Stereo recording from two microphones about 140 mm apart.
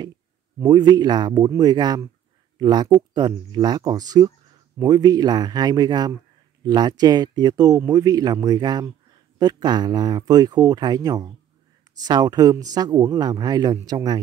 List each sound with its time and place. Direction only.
0.6 s speech: 30° right (ahead or behind)